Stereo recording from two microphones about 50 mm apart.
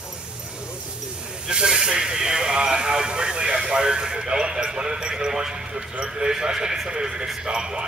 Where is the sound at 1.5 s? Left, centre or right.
Centre.